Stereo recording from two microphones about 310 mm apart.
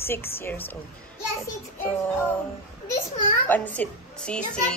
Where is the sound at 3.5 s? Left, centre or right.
Centre.